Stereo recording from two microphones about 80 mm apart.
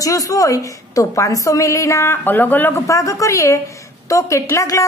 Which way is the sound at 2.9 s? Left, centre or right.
Left.